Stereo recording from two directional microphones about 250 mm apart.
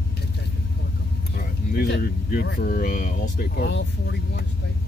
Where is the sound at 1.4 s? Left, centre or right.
Left.